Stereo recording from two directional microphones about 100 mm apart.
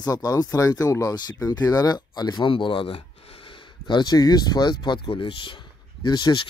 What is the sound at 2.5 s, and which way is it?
Speech, 60° left (ahead or behind).